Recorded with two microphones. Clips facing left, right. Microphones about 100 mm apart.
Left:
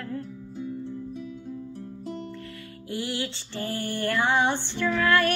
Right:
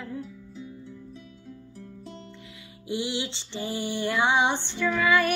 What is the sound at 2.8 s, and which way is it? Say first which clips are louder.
Female singing: right 1 dB; 15° right (ahead or behind).